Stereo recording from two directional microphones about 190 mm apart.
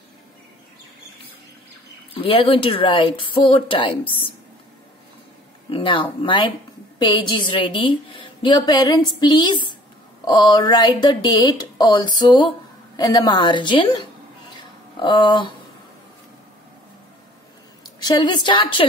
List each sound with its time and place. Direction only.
2.1 s speech: 30° left (ahead or behind)
5.7 s speech: 30° left (ahead or behind)
14.6 s a sound: 25° left (ahead or behind)
18.0 s speech: 20° left (ahead or behind)